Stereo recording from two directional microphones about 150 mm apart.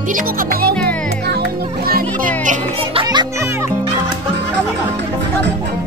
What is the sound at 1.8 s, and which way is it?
Music, 70° right (ahead or behind).